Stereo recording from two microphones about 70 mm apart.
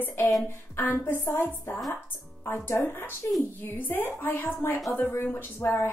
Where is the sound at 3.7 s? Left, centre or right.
Left.